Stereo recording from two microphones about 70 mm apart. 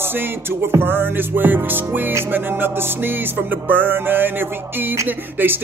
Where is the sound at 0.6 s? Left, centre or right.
Right.